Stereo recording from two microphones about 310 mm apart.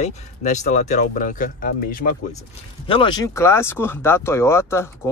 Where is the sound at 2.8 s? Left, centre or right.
Centre.